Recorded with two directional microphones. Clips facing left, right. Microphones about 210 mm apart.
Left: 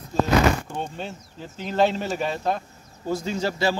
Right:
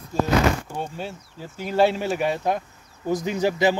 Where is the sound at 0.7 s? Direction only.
10° right (ahead or behind).